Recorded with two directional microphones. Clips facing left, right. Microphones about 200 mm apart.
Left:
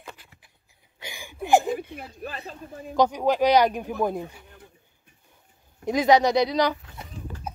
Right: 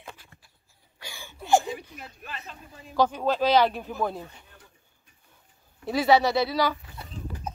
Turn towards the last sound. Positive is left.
turn(degrees=15)  # may be behind; listen again after turning